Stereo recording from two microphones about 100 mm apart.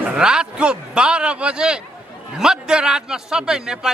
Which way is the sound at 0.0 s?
10° right (ahead or behind).